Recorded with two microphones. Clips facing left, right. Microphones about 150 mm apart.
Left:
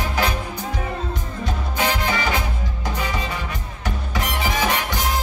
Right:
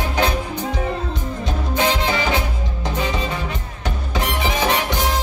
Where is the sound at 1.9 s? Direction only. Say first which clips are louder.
Right 2 dB; 25° right (ahead or behind).